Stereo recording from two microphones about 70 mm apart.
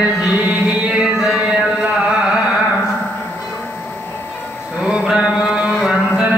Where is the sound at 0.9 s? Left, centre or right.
Centre.